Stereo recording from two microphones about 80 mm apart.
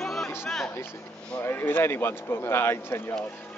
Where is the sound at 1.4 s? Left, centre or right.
Left.